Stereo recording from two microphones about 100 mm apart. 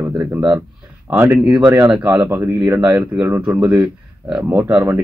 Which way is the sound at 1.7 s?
20° right (ahead or behind).